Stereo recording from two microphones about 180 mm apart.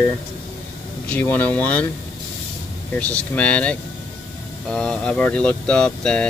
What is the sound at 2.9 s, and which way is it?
Speech, 10° left (ahead or behind).